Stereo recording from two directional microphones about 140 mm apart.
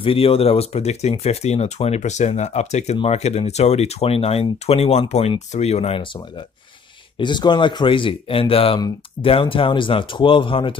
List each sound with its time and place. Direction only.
0.0 s speech: 40° left (ahead or behind)
7.2 s speech: 35° left (ahead or behind)